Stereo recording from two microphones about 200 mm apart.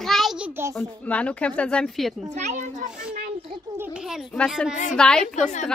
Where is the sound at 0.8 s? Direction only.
5° left (ahead or behind).